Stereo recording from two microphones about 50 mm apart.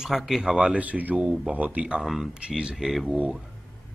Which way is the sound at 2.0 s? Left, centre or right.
Centre.